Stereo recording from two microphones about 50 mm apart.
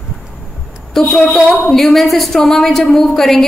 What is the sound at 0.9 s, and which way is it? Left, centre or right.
A woman's voice, centre.